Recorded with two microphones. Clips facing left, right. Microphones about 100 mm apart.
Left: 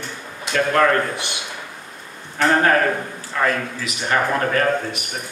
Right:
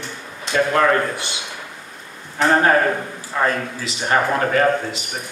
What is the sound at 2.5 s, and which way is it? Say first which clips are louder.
A man's voice: right 1 dB; 20° right (ahead or behind).